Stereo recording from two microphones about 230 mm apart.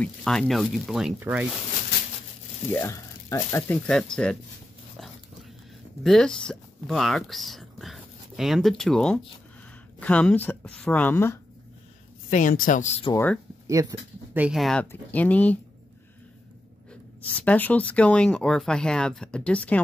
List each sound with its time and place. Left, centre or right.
0.0 s speech: centre
2.7 s speech: centre
6.0 s speech: centre
12.3 s speech: left
13.1 s speech: centre
13.9 s speech: centre
14.3 s speech: centre
17.3 s speech: centre